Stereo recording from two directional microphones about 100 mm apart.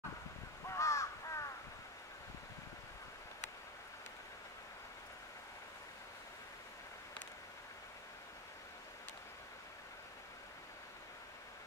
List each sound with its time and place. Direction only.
0.7 s crow: 30° left (ahead or behind)